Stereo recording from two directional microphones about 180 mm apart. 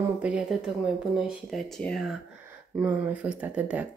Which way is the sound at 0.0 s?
5° right (ahead or behind).